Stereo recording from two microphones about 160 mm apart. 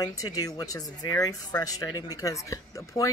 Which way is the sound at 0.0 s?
20° left (ahead or behind).